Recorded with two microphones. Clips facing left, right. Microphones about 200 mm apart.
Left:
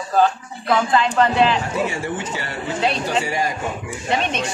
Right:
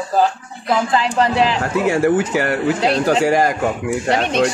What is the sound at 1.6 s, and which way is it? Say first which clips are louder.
A man's voice: right 6 dB; 80° right.